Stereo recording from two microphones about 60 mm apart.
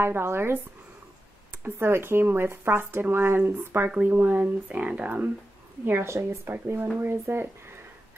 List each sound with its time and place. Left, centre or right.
0.0 s speech: right
1.6 s speech: right
3.9 s speech: right
5.9 s a woman's voice: right